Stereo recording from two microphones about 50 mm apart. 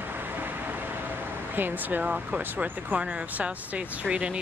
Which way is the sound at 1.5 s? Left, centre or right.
Right.